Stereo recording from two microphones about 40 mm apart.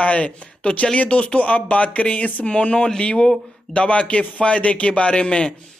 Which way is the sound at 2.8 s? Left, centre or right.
Left.